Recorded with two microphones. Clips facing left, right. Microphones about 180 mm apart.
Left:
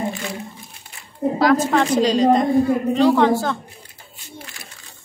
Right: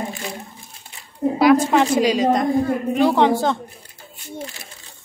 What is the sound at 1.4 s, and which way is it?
A woman's voice, 15° right (ahead or behind).